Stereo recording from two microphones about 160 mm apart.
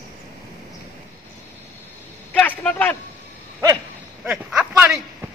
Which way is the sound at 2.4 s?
10° left (ahead or behind).